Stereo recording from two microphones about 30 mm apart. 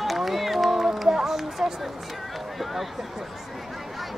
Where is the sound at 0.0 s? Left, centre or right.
Centre.